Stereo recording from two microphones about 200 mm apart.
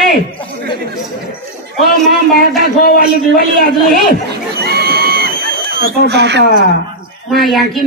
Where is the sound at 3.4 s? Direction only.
45° right (ahead or behind).